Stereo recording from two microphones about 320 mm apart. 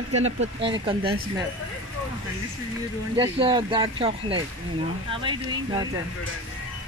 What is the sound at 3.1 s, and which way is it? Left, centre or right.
Speech, centre.